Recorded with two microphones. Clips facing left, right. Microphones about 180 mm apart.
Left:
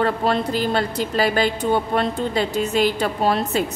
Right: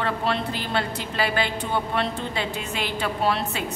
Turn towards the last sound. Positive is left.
turn(degrees=40)  # may be behind; listen again after turning